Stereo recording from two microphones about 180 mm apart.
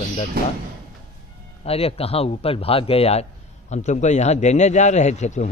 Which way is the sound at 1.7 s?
35° left (ahead or behind).